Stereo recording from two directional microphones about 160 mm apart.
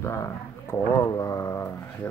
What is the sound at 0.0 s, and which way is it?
Speech, 15° left (ahead or behind).